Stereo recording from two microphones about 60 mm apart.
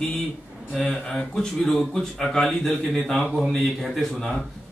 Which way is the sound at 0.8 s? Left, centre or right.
Left.